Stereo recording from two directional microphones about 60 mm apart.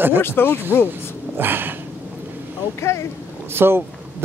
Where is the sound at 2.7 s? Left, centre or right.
Left.